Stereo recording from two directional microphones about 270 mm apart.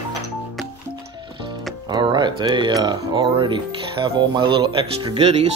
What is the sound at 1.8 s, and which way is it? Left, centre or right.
Music, centre.